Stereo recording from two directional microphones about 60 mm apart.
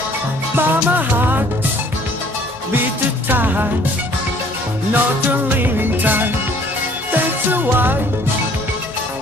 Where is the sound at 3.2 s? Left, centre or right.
Right.